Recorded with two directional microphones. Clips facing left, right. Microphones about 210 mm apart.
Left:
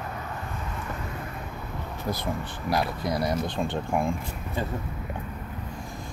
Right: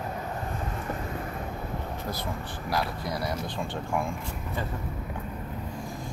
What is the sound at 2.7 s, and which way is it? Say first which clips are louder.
Speech: left 4 dB; 20° left (ahead or behind).